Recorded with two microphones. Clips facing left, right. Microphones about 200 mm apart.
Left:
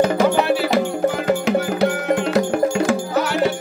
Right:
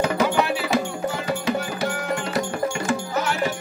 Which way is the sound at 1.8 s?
65° left (ahead or behind).